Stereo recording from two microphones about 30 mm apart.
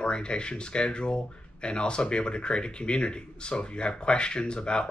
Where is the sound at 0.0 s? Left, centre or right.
Left.